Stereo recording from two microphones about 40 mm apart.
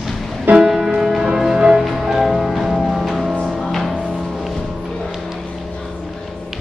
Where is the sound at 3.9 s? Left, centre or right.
Right.